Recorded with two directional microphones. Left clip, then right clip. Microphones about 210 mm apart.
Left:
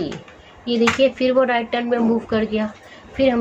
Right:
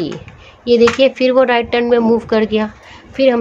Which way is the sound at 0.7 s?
50° right (ahead or behind).